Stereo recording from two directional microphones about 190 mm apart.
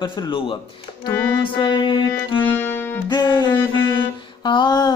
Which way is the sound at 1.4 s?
25° left (ahead or behind).